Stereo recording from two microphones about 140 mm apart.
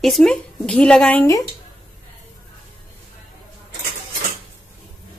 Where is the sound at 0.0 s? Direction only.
Centre (ahead or behind).